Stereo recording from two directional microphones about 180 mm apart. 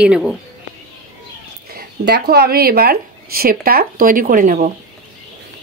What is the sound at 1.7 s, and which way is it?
Speech, 65° right (ahead or behind).